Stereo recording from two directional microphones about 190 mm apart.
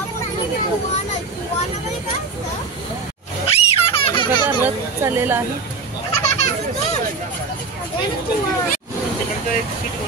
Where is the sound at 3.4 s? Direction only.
30° left (ahead or behind).